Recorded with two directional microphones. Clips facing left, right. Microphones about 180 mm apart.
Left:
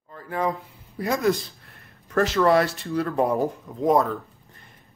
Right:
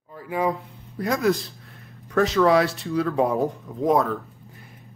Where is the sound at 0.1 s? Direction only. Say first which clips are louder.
Right 2 dB; 10° right (ahead or behind).